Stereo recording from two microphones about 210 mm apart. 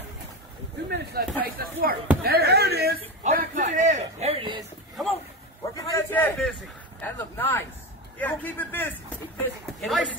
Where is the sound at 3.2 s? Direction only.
40° right (ahead or behind).